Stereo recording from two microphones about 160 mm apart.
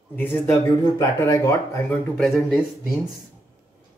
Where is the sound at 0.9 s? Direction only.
20° left (ahead or behind).